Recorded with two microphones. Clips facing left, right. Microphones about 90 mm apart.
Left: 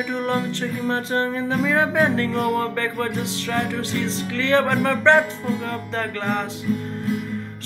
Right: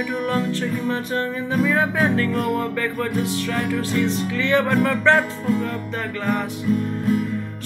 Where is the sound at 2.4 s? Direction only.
50° left (ahead or behind).